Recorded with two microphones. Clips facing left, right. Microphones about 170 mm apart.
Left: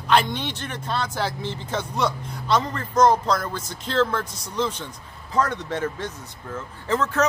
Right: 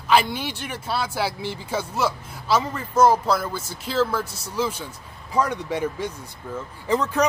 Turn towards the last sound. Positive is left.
turn(degrees=-15)  # may be behind; listen again after turning